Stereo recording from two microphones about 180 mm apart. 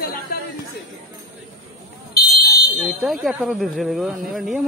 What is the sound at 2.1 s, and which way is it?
Fire alarm, 60° left (ahead or behind).